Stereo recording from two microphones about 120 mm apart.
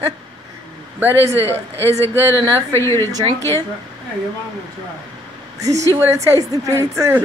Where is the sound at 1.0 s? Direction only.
20° right (ahead or behind).